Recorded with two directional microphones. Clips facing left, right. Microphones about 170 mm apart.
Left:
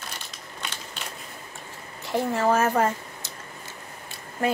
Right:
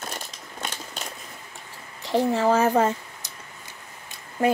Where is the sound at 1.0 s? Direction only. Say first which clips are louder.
Right 2 dB; 40° right (ahead or behind).